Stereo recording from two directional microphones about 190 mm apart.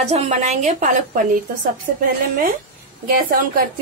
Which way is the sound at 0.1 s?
35° right (ahead or behind).